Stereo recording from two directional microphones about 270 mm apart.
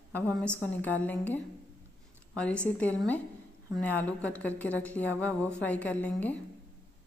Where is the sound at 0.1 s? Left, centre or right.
Centre.